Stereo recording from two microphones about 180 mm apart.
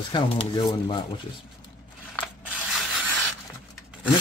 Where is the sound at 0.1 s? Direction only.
25° left (ahead or behind).